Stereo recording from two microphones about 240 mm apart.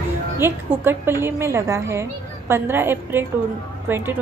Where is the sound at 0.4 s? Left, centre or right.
Centre.